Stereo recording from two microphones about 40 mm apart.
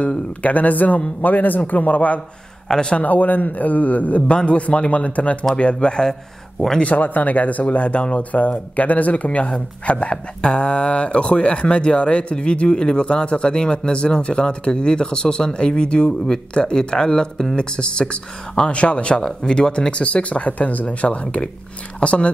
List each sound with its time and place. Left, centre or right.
0.4 s a man's voice: left
2.7 s speech: left
3.0 s speech: left
6.8 s speech: left
8.3 s speech: left; by 17.6 s centre
17.6 s speech: left